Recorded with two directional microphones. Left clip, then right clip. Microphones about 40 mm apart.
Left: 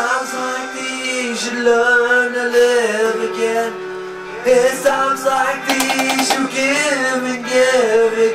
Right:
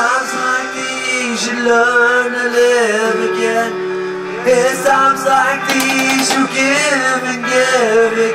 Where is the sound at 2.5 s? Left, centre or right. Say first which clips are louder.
Right 2 dB; centre.